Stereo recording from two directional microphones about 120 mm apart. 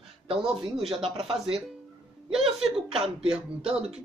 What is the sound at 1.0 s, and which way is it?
Speech, 50° right (ahead or behind).